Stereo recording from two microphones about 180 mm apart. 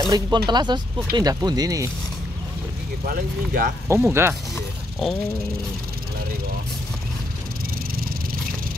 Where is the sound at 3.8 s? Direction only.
15° right (ahead or behind).